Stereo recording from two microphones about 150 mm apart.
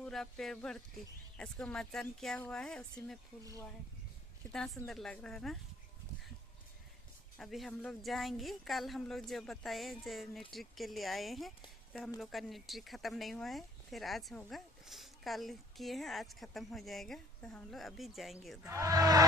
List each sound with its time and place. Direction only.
0.0 s speech: 5° left (ahead or behind)
4.5 s speech: 5° left (ahead or behind)
7.3 s speech: centre (ahead or behind)
18.7 s speech: 25° right (ahead or behind)